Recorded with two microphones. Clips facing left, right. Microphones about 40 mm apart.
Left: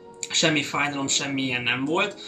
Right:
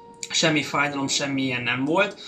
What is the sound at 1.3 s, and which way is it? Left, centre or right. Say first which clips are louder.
Speech: left 1 dB; left.